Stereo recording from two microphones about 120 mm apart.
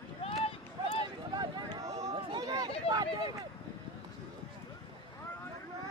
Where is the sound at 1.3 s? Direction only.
35° right (ahead or behind).